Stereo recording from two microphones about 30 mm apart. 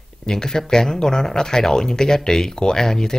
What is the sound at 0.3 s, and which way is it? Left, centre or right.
Speech, centre.